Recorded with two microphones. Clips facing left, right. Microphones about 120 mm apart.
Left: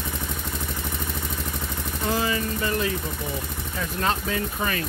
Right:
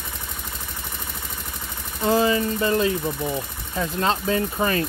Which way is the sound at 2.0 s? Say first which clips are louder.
Right 6 dB; 30° right (ahead or behind).